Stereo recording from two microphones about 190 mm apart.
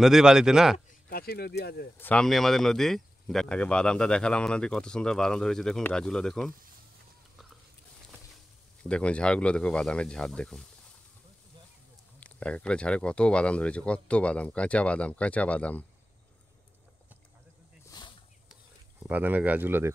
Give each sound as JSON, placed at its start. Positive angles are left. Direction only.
{"t": 0.0, "sound": "speech", "side_deg": -5}
{"t": 1.1, "sound": "speech", "side_deg": 55}
{"t": 2.0, "sound": "speech", "side_deg": 5}
{"t": 8.8, "sound": "speech", "side_deg": 5}
{"t": 12.2, "sound": "speech", "side_deg": 5}
{"t": 17.8, "sound": "a sound", "side_deg": 20}
{"t": 19.0, "sound": "speech", "side_deg": -10}